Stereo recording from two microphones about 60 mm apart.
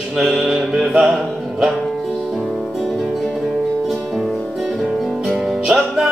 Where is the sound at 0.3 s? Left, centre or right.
Right.